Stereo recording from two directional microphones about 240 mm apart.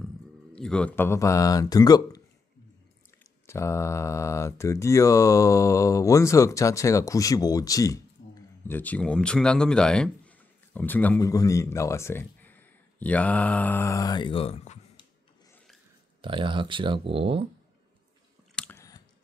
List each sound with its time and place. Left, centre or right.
0.5 s speech: centre
3.4 s speech: centre; by 15.0 s left
16.2 s speech: right
18.5 s drip: centre